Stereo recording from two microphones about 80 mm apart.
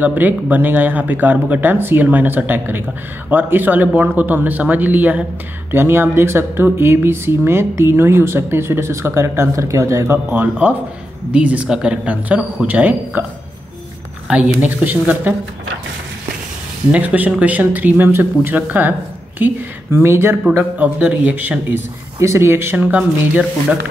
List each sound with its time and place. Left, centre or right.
0.0 s speech: right
10.3 s speech: right
14.2 s speech: centre
16.9 s speech: right
20.5 s speech: centre
22.2 s speech: right; by 23.8 s centre